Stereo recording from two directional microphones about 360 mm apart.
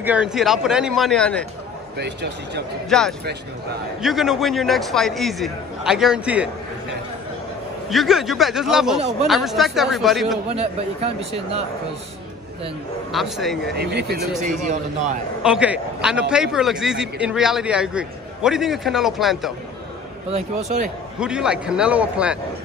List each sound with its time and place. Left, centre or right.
0.0 s a man's voice: centre
2.0 s speech: right
2.9 s a man's voice: centre
7.9 s a man's voice: centre
10.5 s speech: centre
13.1 s a man's voice: centre
13.7 s speech: right
15.4 s a man's voice: centre
20.2 s speech: centre
21.2 s a man's voice: centre